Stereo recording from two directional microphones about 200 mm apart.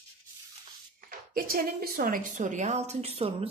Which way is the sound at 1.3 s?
45° right (ahead or behind).